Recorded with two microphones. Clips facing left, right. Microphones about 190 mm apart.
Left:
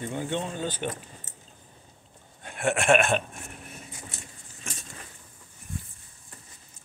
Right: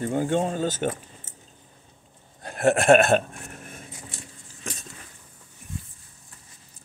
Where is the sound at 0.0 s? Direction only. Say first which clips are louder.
Right 7 dB; 45° right (ahead or behind).